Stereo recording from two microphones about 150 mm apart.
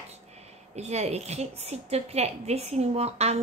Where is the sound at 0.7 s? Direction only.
45° right (ahead or behind).